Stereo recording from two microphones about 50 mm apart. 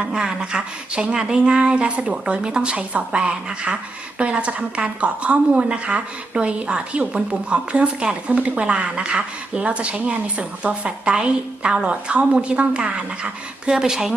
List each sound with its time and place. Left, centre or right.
0.0 s speech: centre
13.7 s speech: centre